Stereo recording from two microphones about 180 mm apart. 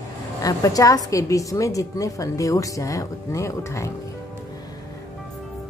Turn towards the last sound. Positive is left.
turn(degrees=15)  # may be behind; listen again after turning